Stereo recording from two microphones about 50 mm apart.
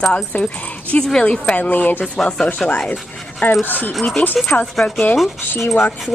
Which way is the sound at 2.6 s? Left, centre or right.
Centre.